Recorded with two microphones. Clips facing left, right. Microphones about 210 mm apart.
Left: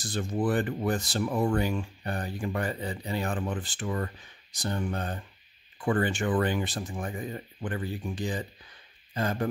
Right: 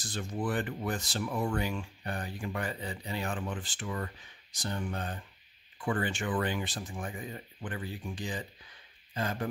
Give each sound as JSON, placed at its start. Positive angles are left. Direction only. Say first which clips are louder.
{"t": 0.0, "sound": "speech", "louder": "left 6 dB", "side_deg": 40}